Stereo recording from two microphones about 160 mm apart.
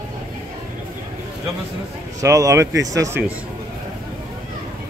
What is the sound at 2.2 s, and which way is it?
Speech, 20° right (ahead or behind).